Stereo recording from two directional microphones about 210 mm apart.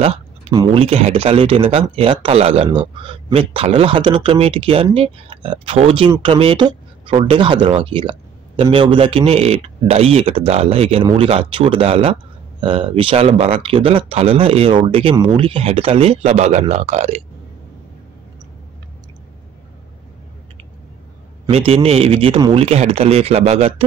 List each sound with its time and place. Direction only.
0.0 s a sound: 30° right (ahead or behind)
0.6 s speech: 25° right (ahead or behind)
21.5 s speech: 30° right (ahead or behind)